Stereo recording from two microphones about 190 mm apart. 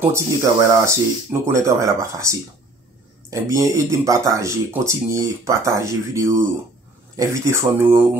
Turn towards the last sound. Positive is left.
turn(degrees=-15)  # may be behind; listen again after turning